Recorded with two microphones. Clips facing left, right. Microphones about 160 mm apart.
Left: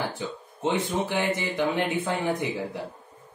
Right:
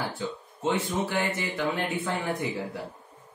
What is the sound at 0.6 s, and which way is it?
Speech, 20° left (ahead or behind).